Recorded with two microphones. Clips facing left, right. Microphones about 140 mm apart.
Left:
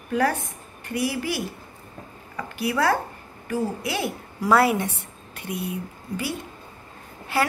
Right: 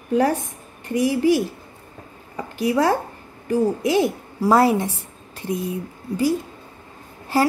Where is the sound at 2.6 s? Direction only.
40° right (ahead or behind).